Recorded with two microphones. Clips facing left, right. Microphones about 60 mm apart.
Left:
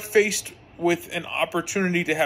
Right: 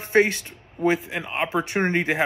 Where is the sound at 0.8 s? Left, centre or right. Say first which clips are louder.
Right 1 dB; centre.